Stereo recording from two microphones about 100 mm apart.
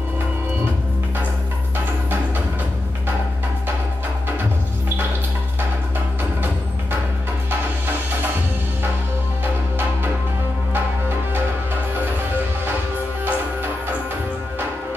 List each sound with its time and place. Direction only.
10.7 s music: 20° right (ahead or behind)
13.2 s music: 20° right (ahead or behind)